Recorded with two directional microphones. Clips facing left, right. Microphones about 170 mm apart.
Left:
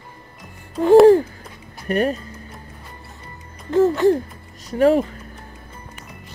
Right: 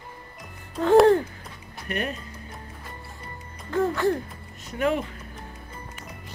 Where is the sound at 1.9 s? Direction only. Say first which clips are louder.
Left 10 dB; 35° left (ahead or behind).